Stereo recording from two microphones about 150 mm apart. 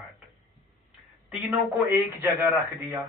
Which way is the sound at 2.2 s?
15° right (ahead or behind).